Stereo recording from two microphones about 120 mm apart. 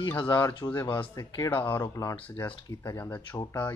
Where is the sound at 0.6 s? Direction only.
25° left (ahead or behind).